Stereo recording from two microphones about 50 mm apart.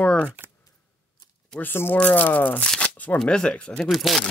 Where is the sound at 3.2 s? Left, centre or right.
Centre.